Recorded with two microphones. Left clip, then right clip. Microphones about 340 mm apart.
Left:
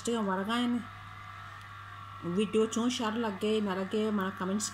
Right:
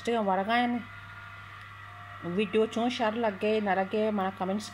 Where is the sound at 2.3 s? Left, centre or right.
Centre.